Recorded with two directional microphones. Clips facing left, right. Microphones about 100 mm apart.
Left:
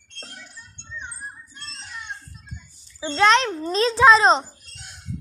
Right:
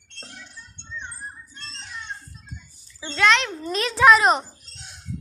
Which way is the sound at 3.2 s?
35° left (ahead or behind).